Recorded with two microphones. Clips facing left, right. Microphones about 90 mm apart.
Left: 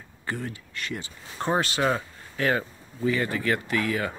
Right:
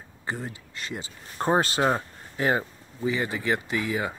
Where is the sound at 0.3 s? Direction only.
25° right (ahead or behind).